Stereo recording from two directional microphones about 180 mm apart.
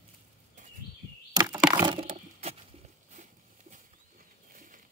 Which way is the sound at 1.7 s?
25° right (ahead or behind).